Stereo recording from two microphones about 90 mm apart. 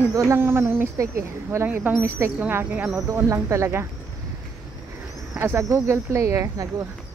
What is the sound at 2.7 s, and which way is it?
Speech, 10° right (ahead or behind).